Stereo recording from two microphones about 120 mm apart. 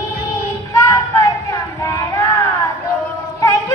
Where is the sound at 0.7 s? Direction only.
30° left (ahead or behind).